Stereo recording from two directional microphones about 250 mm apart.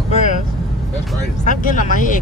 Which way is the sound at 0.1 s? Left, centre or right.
Left.